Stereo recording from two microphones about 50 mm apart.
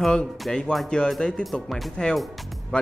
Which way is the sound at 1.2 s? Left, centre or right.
Centre.